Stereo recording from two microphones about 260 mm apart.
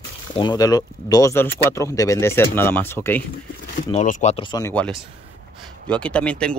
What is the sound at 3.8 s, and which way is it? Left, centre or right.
Speech, left.